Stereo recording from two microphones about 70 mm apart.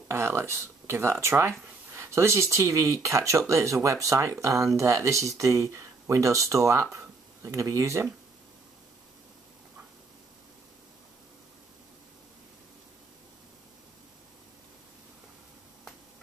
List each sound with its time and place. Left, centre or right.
0.1 s speech: right